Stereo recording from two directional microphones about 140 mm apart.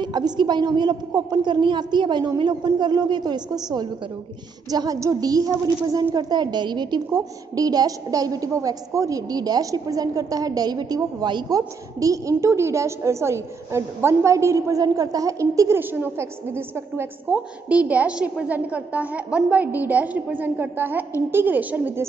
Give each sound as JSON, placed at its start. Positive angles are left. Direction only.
{"t": 0.0, "sound": "a woman's voice", "side_deg": -30}